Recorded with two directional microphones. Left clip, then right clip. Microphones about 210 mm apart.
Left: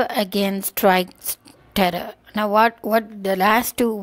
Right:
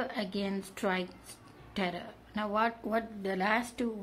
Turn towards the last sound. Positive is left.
turn(degrees=50)  # may be behind; listen again after turning